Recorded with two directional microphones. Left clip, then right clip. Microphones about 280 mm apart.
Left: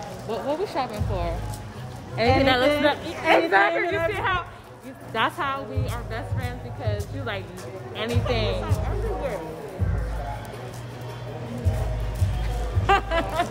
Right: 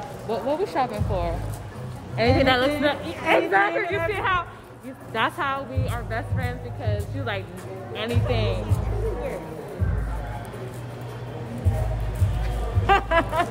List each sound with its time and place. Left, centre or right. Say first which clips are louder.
0.3 s a woman's voice: right 2 dB; centre
3.8 s speech: left 1 dB; left
4.1 s a woman's voice: right 2 dB; centre
12.8 s a woman's voice: right 2 dB; centre